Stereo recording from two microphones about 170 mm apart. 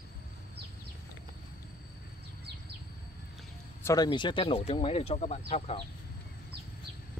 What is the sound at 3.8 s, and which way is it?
Speech, 20° left (ahead or behind).